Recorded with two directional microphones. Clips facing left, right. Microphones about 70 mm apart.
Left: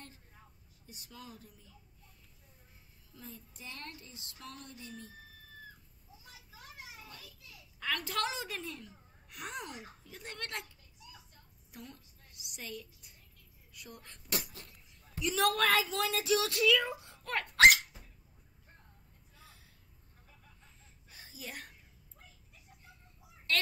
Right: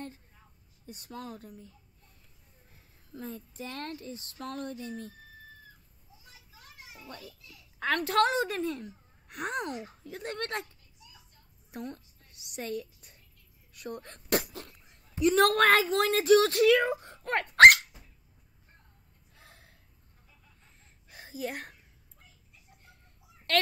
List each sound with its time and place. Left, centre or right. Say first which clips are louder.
0.8 s speech: right 9 dB; right
6.9 s a child's voice: right 6 dB; right
14.3 s sneeze: right 10 dB; right
15.1 s speech: right 8 dB; right
17.6 s dog: right 7 dB; right
19.3 s a sound: right 3 dB; right
20.8 s a sound: right 6 dB; right
23.5 s speech: right 6 dB; right